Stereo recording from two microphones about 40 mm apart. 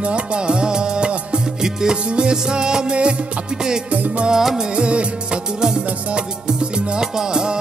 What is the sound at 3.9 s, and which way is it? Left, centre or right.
Music, right.